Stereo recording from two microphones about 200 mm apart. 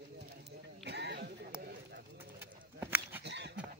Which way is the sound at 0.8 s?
60° right (ahead or behind).